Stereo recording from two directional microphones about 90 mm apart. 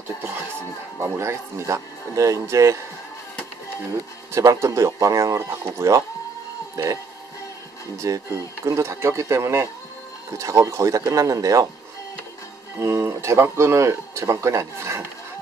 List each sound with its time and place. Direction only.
1.0 s speech: 30° right (ahead or behind)
3.9 s speech: 35° right (ahead or behind)
8.0 s speech: 40° right (ahead or behind)
12.7 s speech: 30° right (ahead or behind)